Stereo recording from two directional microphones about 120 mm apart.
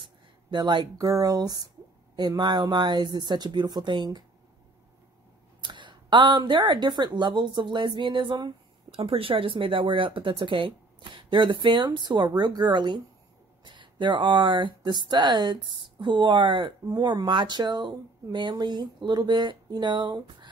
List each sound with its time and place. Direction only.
0.0 s speech: 40° right (ahead or behind)
5.6 s speech: 40° right (ahead or behind)